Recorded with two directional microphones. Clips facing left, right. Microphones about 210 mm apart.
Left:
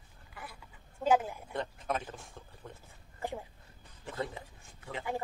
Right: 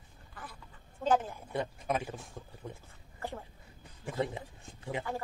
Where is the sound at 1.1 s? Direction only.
10° left (ahead or behind).